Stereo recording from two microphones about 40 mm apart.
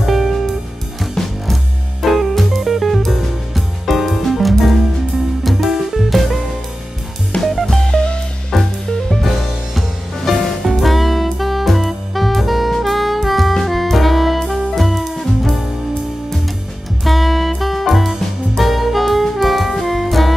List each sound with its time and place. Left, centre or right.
0.0 s music: centre
7.6 s music: centre
8.5 s music: centre
17.0 s music: centre